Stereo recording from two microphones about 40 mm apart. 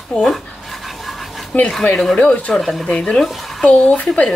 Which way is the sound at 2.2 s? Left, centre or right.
Left.